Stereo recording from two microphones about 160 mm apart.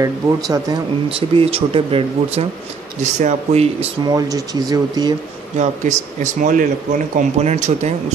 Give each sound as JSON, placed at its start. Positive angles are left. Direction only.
{"t": 0.0, "sound": "speech", "side_deg": -20}
{"t": 1.0, "sound": "speech", "side_deg": -35}
{"t": 4.0, "sound": "speech", "side_deg": -25}
{"t": 5.6, "sound": "speech", "side_deg": -50}